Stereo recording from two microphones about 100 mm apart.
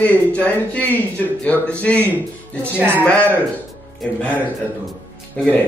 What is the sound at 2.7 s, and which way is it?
Speech, 20° right (ahead or behind).